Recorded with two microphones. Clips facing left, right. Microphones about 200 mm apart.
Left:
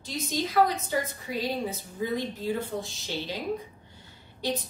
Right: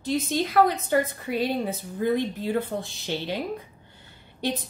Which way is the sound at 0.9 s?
60° right (ahead or behind).